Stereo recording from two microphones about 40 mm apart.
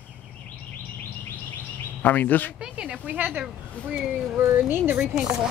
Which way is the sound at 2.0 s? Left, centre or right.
Left.